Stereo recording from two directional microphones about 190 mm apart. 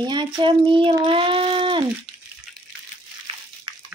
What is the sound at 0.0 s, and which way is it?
Speech, 25° right (ahead or behind).